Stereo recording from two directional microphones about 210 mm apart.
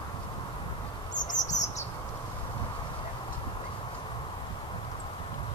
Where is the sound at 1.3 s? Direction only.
35° left (ahead or behind).